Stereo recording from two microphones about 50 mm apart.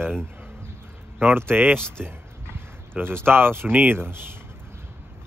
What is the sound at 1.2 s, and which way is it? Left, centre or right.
Speech, right.